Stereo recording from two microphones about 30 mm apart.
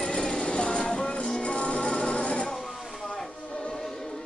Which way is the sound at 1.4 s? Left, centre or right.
Left.